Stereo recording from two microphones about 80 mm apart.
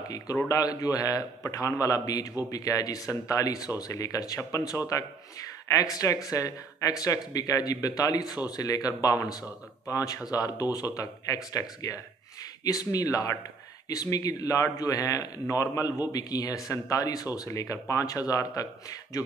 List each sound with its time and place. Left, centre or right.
0.5 s speech: left
4.4 s speech: left